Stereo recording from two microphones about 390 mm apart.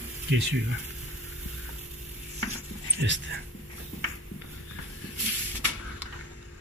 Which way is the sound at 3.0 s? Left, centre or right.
Right.